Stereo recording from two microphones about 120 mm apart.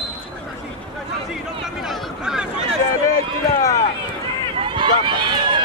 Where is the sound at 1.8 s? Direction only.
5° right (ahead or behind).